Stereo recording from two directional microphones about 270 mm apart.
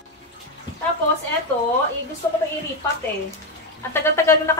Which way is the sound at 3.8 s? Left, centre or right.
Centre.